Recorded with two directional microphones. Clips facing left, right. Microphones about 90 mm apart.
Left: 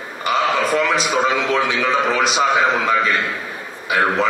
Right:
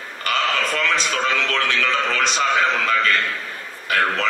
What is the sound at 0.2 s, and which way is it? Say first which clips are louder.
A man's voice: left 4 dB; 10° left (ahead or behind).